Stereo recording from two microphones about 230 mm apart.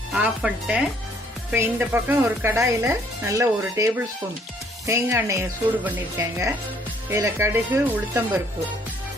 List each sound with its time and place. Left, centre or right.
0.1 s speech: centre